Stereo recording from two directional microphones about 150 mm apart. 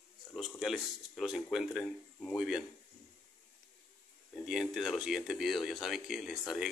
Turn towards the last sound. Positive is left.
turn(degrees=0)  # may be behind; listen again after turning